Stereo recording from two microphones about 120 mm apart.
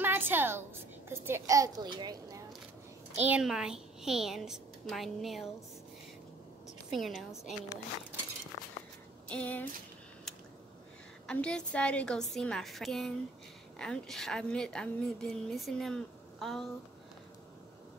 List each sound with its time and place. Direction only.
0.0 s a sound: 15° right (ahead or behind); by 2.4 s 35° right (ahead or behind)
3.3 s a woman's voice: 5° right (ahead or behind)
6.9 s a woman's voice: centre (ahead or behind)
9.3 s a woman's voice: 10° left (ahead or behind)
11.2 s a woman's voice: 10° left (ahead or behind)